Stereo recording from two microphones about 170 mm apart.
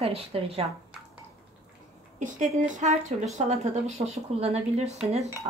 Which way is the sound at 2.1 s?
45° right (ahead or behind).